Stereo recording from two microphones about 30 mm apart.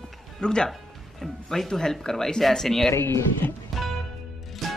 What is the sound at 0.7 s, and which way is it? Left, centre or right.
A man's voice, centre.